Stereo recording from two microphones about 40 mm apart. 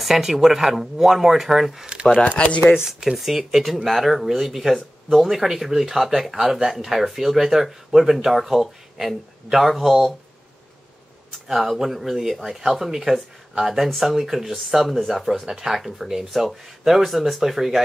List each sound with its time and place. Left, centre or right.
0.0 s speech: centre
2.3 s speech: left
2.7 s speech: centre
11.4 s speech: centre